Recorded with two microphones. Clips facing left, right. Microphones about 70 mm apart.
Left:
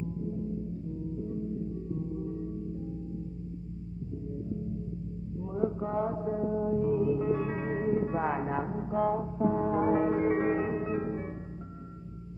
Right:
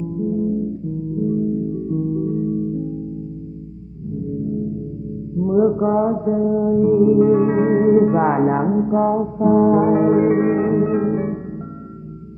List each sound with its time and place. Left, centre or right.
0.0 s music: right
5.4 s mantra: right
5.9 s music: right
9.4 s music: right